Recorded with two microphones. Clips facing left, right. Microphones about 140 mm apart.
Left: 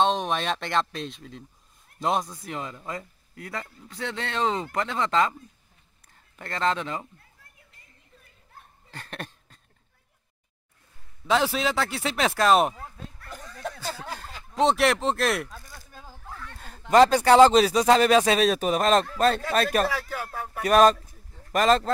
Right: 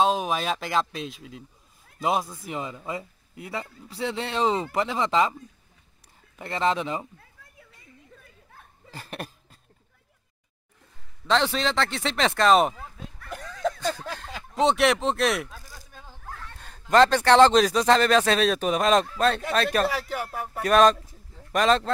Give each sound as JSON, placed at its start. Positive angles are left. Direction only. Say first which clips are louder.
{"t": 0.0, "sound": "speech", "louder": "right 1 dB", "side_deg": -5}
{"t": 6.3, "sound": "speech", "louder": "right 2 dB", "side_deg": -5}
{"t": 8.9, "sound": "a sound", "louder": "right 2 dB", "side_deg": -5}
{"t": 11.2, "sound": "speech", "louder": "even", "side_deg": 5}
{"t": 13.3, "sound": "a sound", "louder": "right 8 dB", "side_deg": -90}
{"t": 14.5, "sound": "speech", "louder": "even", "side_deg": 0}
{"t": 16.0, "sound": "a sound", "louder": "even", "side_deg": 5}
{"t": 16.9, "sound": "speech", "louder": "left 1 dB", "side_deg": 10}
{"t": 19.9, "sound": "speech", "louder": "right 2 dB", "side_deg": -20}
{"t": 20.6, "sound": "speech", "louder": "even", "side_deg": 5}